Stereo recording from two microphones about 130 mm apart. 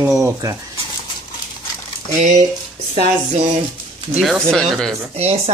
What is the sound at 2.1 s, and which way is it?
Speech, 70° right (ahead or behind).